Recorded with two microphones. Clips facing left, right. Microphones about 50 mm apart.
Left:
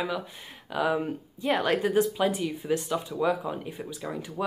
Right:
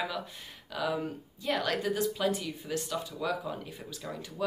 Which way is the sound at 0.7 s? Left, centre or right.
Left.